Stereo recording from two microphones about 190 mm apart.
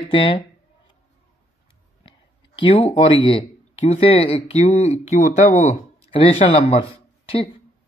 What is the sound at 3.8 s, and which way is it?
Speech, 30° left (ahead or behind).